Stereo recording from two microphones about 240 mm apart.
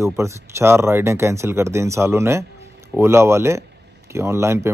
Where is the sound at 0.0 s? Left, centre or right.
Centre.